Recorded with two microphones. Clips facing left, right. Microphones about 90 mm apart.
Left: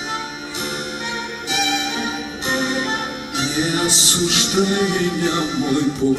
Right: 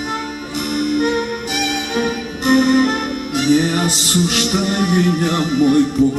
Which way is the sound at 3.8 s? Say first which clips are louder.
Right 3 dB; 45° right (ahead or behind).